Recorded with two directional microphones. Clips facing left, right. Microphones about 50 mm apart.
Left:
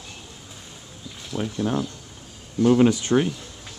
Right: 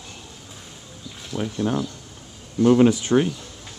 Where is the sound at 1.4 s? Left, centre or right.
Centre.